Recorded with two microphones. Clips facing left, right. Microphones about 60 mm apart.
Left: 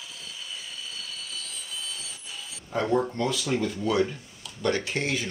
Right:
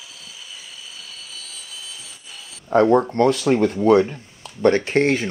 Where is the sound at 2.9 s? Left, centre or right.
Right.